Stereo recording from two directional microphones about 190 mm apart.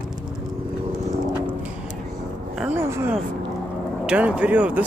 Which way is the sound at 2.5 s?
10° right (ahead or behind).